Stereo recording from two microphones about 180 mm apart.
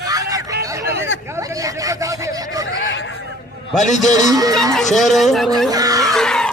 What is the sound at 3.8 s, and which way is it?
Speech, 40° left (ahead or behind).